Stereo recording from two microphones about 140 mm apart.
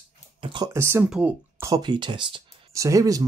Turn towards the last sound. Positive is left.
turn(degrees=-25)  # may be behind; listen again after turning